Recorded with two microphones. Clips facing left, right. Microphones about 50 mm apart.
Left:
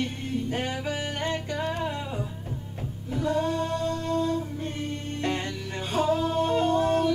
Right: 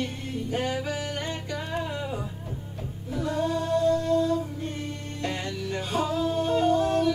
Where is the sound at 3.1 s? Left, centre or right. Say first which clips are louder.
Left 1 dB; left.